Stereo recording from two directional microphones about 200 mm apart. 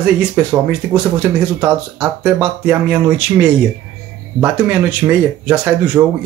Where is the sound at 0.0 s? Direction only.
5° right (ahead or behind).